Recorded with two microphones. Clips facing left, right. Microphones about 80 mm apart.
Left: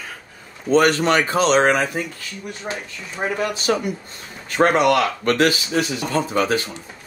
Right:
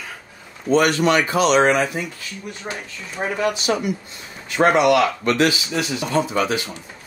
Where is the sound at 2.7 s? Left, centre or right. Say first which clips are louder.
Left 2 dB; centre.